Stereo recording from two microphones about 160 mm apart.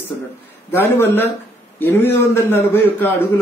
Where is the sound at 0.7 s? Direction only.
15° left (ahead or behind).